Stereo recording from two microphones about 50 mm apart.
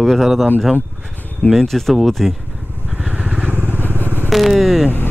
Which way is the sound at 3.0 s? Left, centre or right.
Centre.